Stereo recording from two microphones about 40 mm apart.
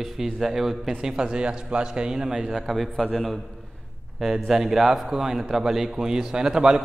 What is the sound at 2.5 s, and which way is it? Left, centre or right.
A man's voice, centre.